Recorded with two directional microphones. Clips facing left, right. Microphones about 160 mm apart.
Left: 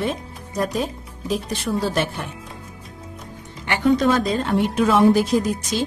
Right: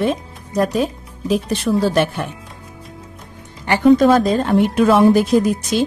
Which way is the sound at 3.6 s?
45° right (ahead or behind).